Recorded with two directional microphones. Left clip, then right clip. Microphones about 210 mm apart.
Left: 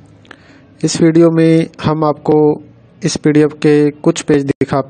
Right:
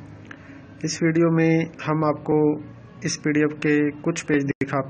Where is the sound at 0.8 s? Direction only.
60° left (ahead or behind).